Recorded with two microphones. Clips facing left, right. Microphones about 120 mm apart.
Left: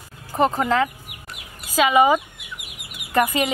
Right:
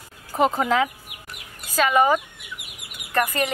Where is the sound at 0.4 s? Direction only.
Centre (ahead or behind).